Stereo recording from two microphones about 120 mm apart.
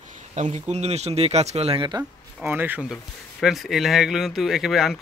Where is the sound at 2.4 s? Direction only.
15° right (ahead or behind).